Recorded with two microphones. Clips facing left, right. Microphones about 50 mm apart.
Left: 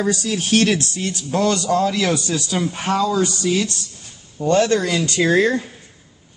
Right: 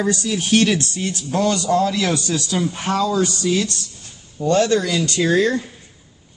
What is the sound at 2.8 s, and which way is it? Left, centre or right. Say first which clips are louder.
Speech: left 1 dB; left.